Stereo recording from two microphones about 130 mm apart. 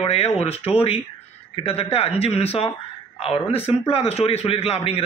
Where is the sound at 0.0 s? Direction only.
50° left (ahead or behind).